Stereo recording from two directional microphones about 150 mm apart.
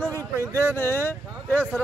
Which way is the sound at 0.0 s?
15° left (ahead or behind).